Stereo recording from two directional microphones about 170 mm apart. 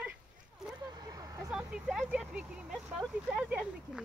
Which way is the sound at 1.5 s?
5° right (ahead or behind).